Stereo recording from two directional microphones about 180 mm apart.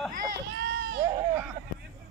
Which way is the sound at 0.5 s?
65° right (ahead or behind).